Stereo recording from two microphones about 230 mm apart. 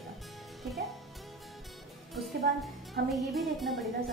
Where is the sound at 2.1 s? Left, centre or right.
Centre.